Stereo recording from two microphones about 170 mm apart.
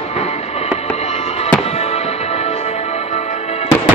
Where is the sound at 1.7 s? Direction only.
40° left (ahead or behind).